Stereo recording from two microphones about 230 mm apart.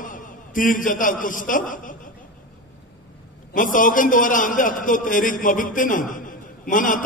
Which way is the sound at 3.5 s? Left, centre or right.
Left.